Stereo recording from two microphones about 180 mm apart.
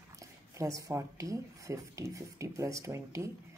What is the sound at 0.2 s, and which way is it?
Speech, 20° right (ahead or behind).